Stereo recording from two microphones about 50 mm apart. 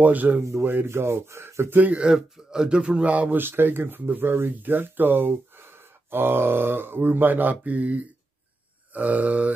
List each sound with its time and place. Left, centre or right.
0.0 s speech: right
0.4 s speech: right
1.8 s speech: right
2.0 s speech: centre; by 3.3 s right
3.3 s speech: right